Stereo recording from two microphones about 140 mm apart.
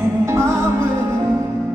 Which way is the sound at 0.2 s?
20° right (ahead or behind).